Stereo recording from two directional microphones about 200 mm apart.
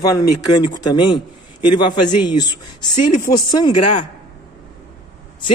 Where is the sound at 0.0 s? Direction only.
20° left (ahead or behind).